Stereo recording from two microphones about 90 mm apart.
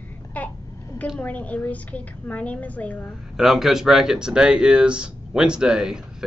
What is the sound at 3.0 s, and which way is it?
Speech, 5° right (ahead or behind).